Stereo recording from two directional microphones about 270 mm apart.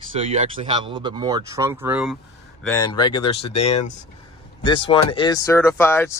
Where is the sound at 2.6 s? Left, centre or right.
Centre.